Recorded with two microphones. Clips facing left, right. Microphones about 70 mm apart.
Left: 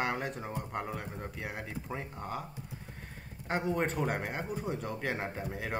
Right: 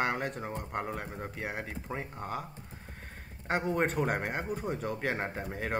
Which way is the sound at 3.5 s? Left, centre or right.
Centre.